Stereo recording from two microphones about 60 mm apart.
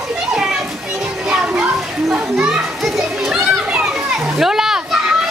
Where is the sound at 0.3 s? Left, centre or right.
Centre.